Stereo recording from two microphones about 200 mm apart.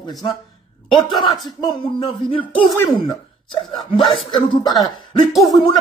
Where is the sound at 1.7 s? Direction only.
25° left (ahead or behind).